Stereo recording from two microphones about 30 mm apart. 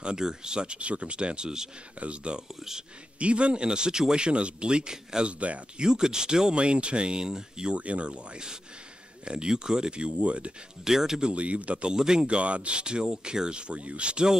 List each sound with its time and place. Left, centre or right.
0.0 s speech: right
3.6 s speech: right
5.2 s speech: right
5.8 s speech: right
6.5 s speech: right
7.7 s speech: right
9.2 s speech: right
10.1 s speech: right
10.8 s speech: centre
11.3 s speech: right
11.9 s speech: right